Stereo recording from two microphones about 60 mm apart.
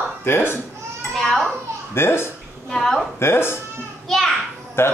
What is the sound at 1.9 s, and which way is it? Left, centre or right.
Speech, left.